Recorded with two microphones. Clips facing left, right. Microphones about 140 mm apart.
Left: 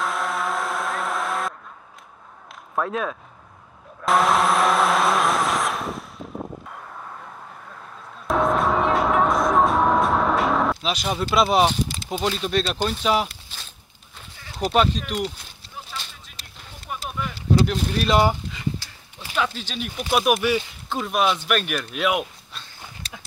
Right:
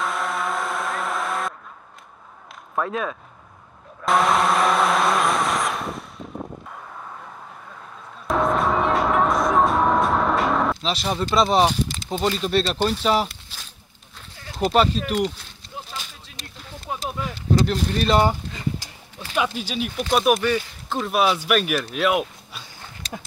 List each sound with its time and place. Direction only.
0.0 s vehicle: centre (ahead or behind)
2.7 s a man's voice: centre (ahead or behind)
4.0 s vehicle: centre (ahead or behind)
8.3 s music: centre (ahead or behind)
14.6 s speech: centre (ahead or behind)
16.8 s a sound: 20° right (ahead or behind)
17.6 s speech: centre (ahead or behind)
19.3 s speech: 10° right (ahead or behind)
20.0 s speech: 5° left (ahead or behind)